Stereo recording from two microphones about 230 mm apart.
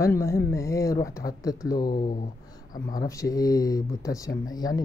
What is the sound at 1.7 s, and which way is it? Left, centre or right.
Speech, left.